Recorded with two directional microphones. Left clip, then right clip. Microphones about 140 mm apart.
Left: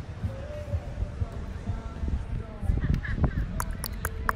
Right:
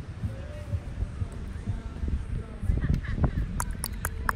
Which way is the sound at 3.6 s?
Centre (ahead or behind).